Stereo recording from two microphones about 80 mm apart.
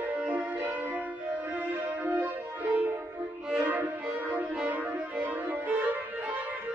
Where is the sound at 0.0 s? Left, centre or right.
Centre.